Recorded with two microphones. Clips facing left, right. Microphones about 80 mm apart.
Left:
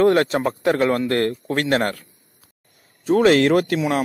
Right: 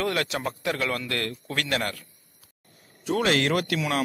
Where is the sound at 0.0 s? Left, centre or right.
Left.